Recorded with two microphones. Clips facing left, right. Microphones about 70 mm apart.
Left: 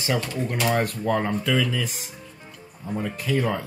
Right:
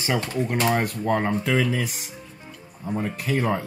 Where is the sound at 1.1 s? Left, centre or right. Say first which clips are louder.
Right 2 dB; centre.